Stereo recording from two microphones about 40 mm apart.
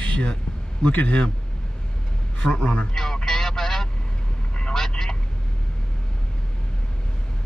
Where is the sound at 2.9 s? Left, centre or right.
Centre.